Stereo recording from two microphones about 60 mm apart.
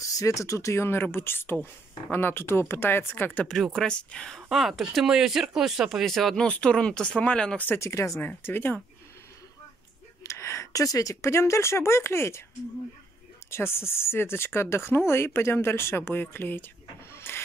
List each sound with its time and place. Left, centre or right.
0.0 s speech: left
1.1 s speech: left
3.4 s speech: centre
3.7 s speech: centre
4.4 s speech: centre
6.3 s speech: centre
7.8 s speech: left
8.2 s speech: left
10.2 s speech: left
13.5 s speech: left
17.1 s a sound: left